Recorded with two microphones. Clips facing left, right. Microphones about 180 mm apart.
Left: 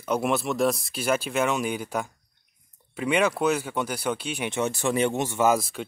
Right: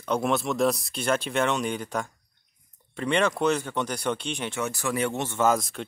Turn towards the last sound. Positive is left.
turn(degrees=5)  # may be behind; listen again after turning